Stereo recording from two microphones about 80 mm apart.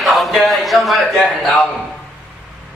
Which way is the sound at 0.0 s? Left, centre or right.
Centre.